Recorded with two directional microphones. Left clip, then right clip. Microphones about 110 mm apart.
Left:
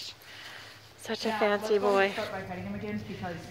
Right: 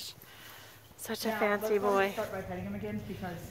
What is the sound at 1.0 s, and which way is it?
A woman's voice, 20° right (ahead or behind).